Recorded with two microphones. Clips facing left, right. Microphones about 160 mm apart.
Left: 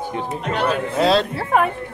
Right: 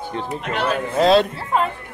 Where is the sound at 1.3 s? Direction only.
65° left (ahead or behind).